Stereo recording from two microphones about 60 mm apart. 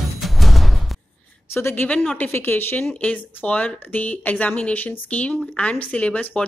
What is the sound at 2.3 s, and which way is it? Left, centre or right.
Speech, left.